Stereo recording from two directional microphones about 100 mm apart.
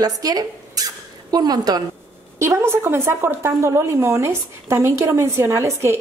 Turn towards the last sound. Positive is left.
turn(degrees=-30)  # may be behind; listen again after turning